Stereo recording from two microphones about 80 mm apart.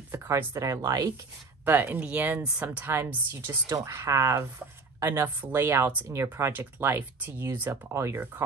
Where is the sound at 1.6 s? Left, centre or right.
Right.